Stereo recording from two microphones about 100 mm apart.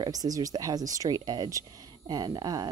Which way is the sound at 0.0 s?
40° right (ahead or behind).